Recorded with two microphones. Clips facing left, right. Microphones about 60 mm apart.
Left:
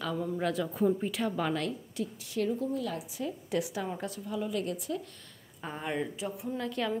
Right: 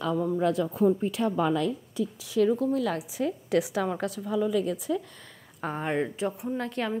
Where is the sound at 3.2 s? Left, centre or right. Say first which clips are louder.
Right 7 dB; right.